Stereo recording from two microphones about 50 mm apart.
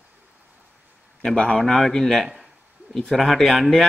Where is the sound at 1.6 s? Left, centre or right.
Centre.